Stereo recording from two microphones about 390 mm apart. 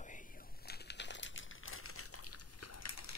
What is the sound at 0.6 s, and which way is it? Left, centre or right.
Crumpling, left.